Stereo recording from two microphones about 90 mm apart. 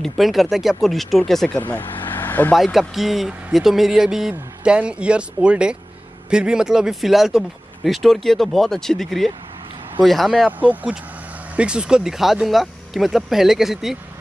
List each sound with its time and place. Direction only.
0.0 s speech: centre (ahead or behind)
1.6 s vehicle: 20° left (ahead or behind)
2.5 s speech: centre (ahead or behind)
10.6 s speech: 15° right (ahead or behind)